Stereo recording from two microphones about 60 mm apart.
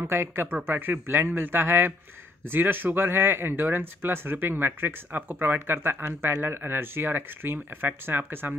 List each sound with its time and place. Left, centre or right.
0.0 s speech: right